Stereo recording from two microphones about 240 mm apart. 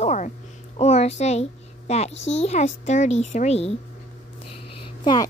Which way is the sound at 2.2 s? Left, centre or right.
Left.